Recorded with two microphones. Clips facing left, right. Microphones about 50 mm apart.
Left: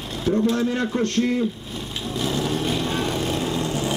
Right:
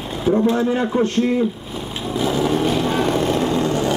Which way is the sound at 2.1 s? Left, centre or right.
Centre.